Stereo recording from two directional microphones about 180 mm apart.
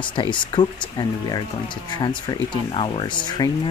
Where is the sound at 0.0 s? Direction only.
25° left (ahead or behind).